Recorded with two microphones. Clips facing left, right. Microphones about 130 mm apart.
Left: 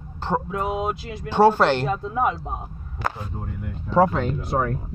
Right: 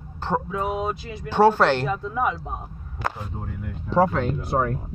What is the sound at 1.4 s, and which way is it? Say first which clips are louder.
Speech: left 1 dB; 25° left (ahead or behind).